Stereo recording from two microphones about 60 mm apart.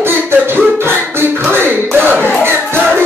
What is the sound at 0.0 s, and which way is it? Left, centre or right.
Music, right.